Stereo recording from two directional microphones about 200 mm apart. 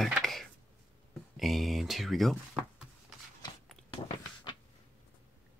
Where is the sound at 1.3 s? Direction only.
Centre (ahead or behind).